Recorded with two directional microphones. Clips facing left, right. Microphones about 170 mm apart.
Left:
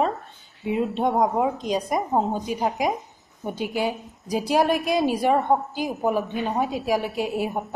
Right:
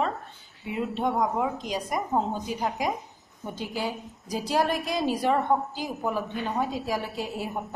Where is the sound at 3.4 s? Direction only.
15° left (ahead or behind).